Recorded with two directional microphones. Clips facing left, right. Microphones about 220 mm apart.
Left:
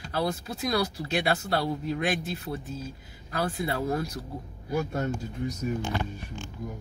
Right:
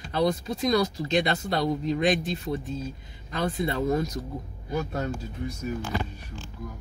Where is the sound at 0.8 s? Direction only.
10° left (ahead or behind).